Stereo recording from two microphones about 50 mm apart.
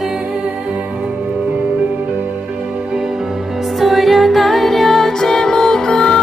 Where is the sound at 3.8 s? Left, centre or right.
Centre.